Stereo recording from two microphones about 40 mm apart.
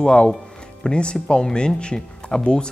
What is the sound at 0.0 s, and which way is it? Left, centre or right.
Speech, left.